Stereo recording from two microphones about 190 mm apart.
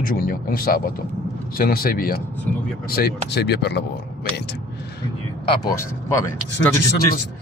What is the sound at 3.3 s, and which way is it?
Speech, 60° left (ahead or behind).